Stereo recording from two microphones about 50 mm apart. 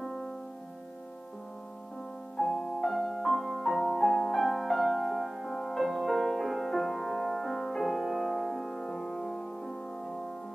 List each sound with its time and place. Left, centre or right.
2.3 s music: centre